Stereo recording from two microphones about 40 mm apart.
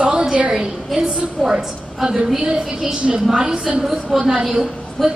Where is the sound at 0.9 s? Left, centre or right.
Centre.